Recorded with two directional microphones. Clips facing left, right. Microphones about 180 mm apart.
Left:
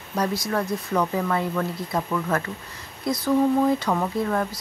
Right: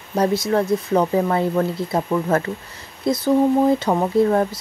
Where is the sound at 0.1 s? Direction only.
25° right (ahead or behind).